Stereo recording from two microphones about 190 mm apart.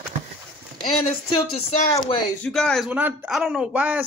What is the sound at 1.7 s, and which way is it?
Speech, 35° left (ahead or behind).